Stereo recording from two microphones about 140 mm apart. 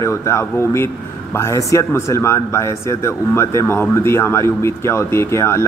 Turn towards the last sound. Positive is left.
turn(degrees=20)  # may be behind; listen again after turning